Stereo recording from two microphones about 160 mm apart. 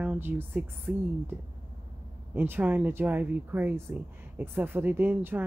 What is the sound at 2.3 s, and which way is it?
A woman's voice, 15° right (ahead or behind).